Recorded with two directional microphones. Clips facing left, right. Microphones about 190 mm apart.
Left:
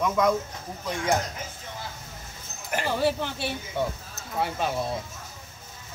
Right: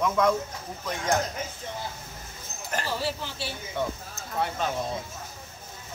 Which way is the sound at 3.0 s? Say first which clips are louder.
Left 6 dB; 55° left (ahead or behind).